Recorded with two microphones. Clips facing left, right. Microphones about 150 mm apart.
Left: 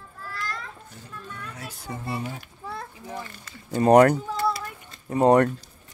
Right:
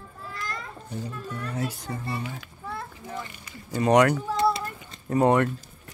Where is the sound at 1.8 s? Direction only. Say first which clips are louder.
Left 1 dB; 20° left (ahead or behind).